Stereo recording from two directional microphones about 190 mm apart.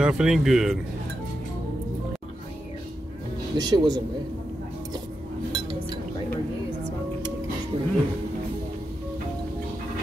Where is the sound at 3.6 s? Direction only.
20° right (ahead or behind).